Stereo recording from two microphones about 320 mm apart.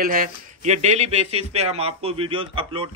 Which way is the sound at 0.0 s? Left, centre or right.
Right.